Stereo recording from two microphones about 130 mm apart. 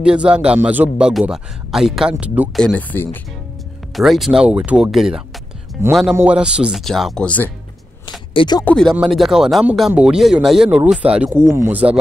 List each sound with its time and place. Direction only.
0.0 s a man's voice: 10° right (ahead or behind)
2.5 s speech: 5° left (ahead or behind)
3.9 s speech: centre (ahead or behind)
5.8 s speech: 20° right (ahead or behind)
6.2 s speech: 5° right (ahead or behind)
7.2 s speech: 15° left (ahead or behind)
8.3 s speech: 35° left (ahead or behind)
8.6 s speech: 5° left (ahead or behind)
11.0 s speech: 50° right (ahead or behind)
11.5 s speech: 20° right (ahead or behind)